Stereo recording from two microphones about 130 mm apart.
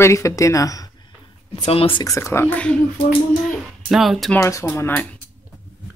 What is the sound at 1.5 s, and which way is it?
Speech, 50° left (ahead or behind).